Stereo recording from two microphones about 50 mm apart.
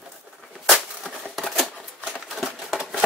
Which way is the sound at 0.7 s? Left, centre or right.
Centre.